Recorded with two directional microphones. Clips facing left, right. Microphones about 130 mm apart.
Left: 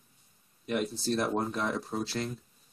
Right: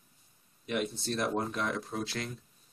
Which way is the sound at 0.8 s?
Centre (ahead or behind).